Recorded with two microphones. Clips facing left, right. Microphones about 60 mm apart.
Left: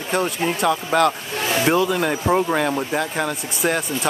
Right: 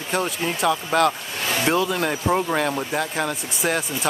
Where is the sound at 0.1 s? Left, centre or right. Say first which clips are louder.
Left 3 dB; centre.